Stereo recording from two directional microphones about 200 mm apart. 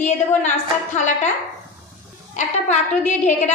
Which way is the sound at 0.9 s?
35° left (ahead or behind).